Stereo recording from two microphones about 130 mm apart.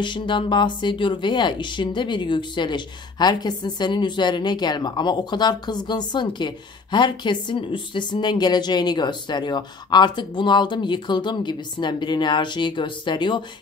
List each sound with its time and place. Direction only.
0.0 s speech: 40° left (ahead or behind)